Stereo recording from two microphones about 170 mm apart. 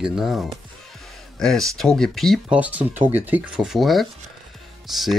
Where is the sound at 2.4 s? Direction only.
10° right (ahead or behind).